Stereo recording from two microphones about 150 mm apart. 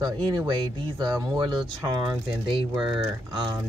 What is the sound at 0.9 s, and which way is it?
Speech, 25° right (ahead or behind).